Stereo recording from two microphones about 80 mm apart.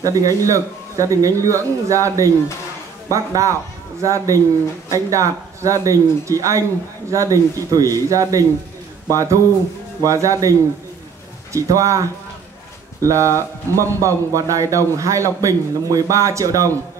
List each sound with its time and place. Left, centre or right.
0.0 s speech: right
11.5 s speech: right